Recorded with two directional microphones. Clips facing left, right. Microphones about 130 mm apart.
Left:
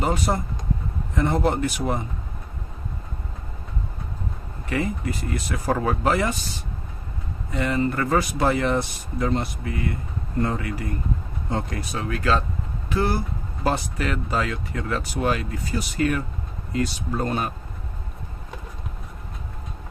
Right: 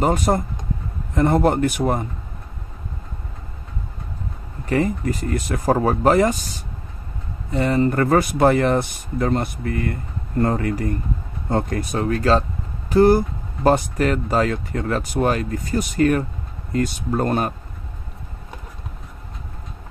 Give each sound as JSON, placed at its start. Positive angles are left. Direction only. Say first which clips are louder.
{"t": 0.0, "sound": "speech", "louder": "right 5 dB", "side_deg": -45}
{"t": 4.6, "sound": "speech", "louder": "right 6 dB", "side_deg": -40}
{"t": 7.5, "sound": "speech", "louder": "right 5 dB", "side_deg": -35}